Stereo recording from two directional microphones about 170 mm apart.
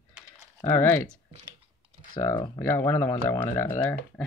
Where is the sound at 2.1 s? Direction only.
25° left (ahead or behind).